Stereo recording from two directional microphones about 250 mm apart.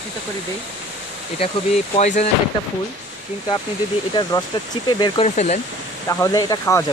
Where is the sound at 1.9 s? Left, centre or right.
Left.